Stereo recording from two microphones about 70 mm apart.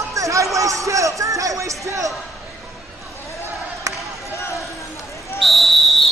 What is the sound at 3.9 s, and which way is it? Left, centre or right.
Basketball bounce, right.